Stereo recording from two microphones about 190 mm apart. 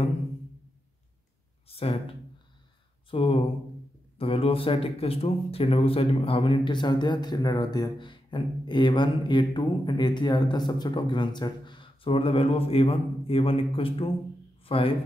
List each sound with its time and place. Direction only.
1.7 s speech: 30° left (ahead or behind)